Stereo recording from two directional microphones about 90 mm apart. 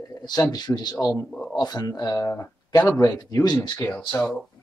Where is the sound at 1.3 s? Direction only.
10° left (ahead or behind).